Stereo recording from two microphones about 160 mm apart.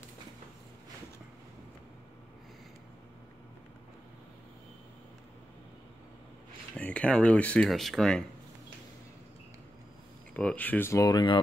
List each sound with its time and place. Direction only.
6.8 s speech: 5° left (ahead or behind)
10.3 s speech: 10° left (ahead or behind); by 11.4 s 30° left (ahead or behind)